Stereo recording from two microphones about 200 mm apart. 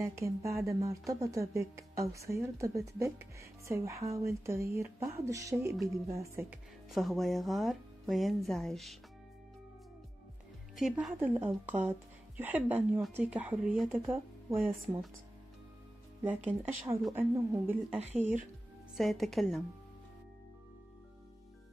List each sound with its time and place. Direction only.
0.0 s speech: 15° right (ahead or behind); by 8.9 s centre (ahead or behind)
10.8 s speech: centre (ahead or behind)
16.3 s speech: 10° right (ahead or behind)
18.9 s speech: centre (ahead or behind)